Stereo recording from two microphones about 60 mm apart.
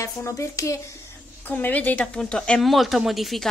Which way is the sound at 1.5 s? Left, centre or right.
Left.